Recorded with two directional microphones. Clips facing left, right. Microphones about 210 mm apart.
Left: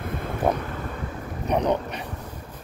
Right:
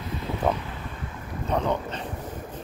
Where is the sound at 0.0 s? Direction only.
55° left (ahead or behind).